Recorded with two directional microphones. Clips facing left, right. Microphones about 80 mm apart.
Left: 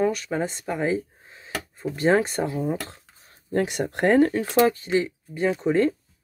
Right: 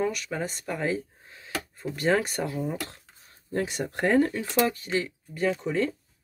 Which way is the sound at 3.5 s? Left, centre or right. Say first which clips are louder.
Left 5 dB; left.